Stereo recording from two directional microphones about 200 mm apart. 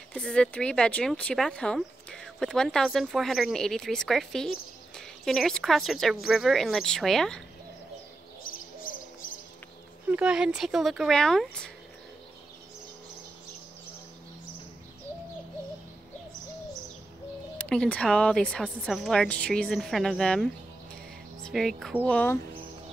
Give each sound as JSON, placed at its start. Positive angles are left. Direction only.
{"t": 0.1, "sound": "speech", "side_deg": 5}
{"t": 8.5, "sound": "bird", "side_deg": 45}
{"t": 10.0, "sound": "speech", "side_deg": -5}
{"t": 17.6, "sound": "speech", "side_deg": 5}